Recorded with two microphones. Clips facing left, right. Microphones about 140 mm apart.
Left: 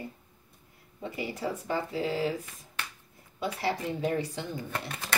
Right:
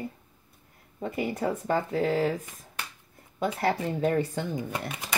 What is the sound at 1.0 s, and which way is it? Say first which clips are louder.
Speech: right 5 dB; 50° right (ahead or behind).